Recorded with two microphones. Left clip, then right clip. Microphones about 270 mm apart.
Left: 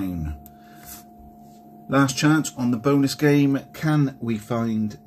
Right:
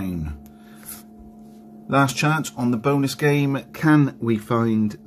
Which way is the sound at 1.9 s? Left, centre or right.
Centre.